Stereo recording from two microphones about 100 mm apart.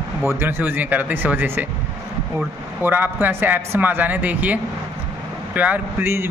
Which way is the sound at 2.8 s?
20° right (ahead or behind).